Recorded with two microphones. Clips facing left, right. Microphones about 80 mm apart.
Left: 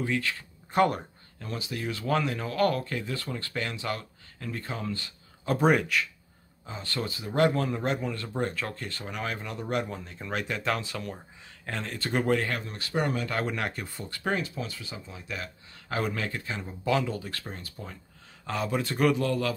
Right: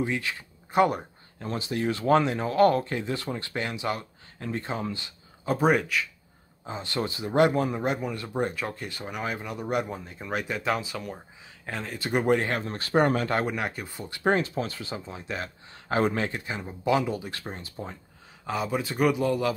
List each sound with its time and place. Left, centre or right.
0.0 s speech: centre
0.7 s speech: centre
1.4 s speech: right
5.4 s speech: centre
6.6 s speech: right
12.5 s speech: right
13.5 s speech: centre
14.2 s speech: right
18.4 s speech: centre